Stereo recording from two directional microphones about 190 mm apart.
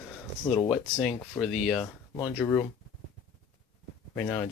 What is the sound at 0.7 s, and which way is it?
Speech, centre (ahead or behind).